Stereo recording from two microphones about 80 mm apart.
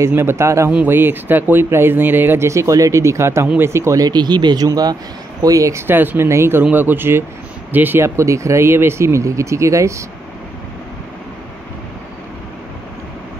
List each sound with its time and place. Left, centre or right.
0.0 s speech: right
4.0 s speech: right
6.6 s speech: right